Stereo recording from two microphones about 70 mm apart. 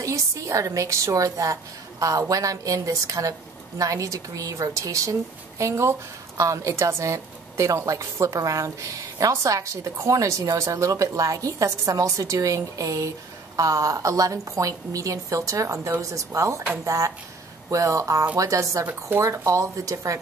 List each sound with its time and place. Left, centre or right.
0.0 s a woman's voice: right
18.9 s speech: right
19.2 s a woman's voice: right